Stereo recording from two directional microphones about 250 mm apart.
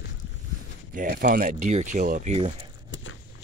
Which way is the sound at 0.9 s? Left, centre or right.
Right.